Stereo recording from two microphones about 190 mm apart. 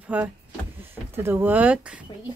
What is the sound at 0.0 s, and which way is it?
Speech, 5° right (ahead or behind).